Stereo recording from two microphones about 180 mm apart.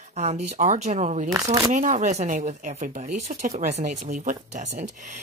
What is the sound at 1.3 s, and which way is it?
Speech, 15° right (ahead or behind).